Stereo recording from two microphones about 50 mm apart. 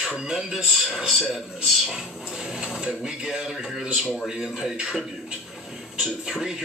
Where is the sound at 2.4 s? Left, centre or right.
Centre.